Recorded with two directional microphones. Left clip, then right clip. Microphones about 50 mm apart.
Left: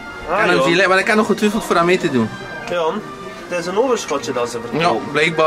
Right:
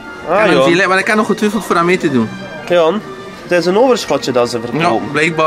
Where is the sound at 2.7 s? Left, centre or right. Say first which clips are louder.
Right 8 dB; right.